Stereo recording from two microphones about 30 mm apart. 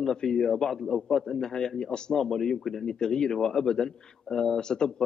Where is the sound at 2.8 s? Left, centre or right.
Left.